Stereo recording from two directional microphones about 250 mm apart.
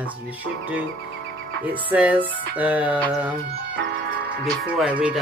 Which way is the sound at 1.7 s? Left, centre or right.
Centre.